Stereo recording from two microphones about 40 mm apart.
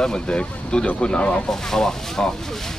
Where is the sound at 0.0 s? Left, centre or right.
Left.